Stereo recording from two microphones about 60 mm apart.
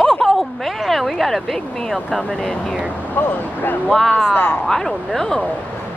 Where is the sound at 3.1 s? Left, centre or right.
Left.